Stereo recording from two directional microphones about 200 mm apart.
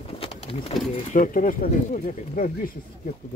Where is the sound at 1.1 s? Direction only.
40° left (ahead or behind).